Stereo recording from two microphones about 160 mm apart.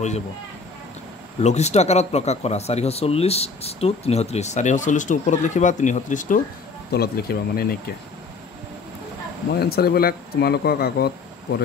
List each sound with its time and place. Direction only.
1.4 s speech: 45° left (ahead or behind)
6.9 s speech: 75° left (ahead or behind)
9.6 s speech: 75° left (ahead or behind)